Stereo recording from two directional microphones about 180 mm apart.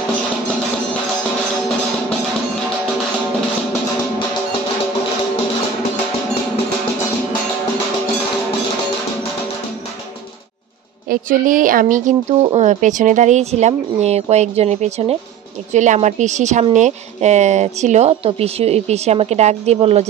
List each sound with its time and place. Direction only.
11.1 s speech: 50° right (ahead or behind)